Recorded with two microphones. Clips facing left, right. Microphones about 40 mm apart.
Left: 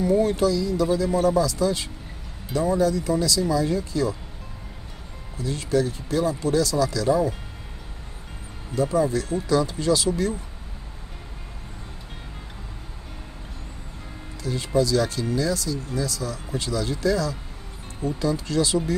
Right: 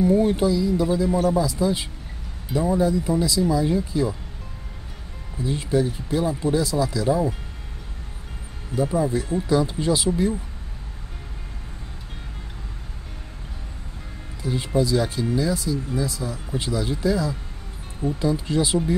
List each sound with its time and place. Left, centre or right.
0.0 s speech: right
5.4 s speech: right
8.7 s speech: centre
14.4 s speech: right